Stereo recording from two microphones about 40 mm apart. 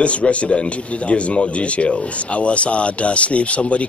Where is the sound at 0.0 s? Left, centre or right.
Left.